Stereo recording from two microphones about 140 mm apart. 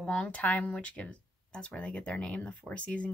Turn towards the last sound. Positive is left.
turn(degrees=10)  # may be behind; listen again after turning